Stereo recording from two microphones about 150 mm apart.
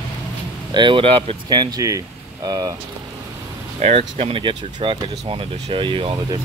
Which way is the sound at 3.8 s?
45° right (ahead or behind).